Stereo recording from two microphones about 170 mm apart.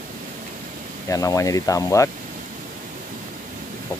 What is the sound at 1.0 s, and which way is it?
Speech, 20° left (ahead or behind).